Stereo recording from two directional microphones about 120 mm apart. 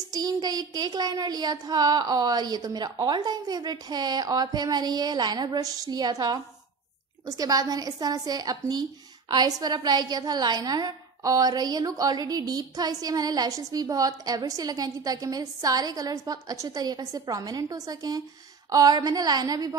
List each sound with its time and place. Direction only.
0.1 s a woman's voice: 35° right (ahead or behind)